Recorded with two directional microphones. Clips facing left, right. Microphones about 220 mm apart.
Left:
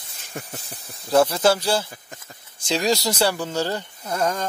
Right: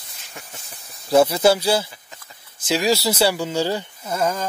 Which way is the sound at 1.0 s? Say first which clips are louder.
Right 2 dB; 10° right (ahead or behind).